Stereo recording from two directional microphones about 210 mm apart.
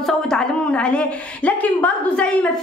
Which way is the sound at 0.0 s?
5° left (ahead or behind).